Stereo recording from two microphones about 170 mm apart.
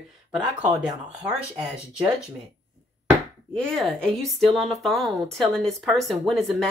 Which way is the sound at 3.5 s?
5° left (ahead or behind).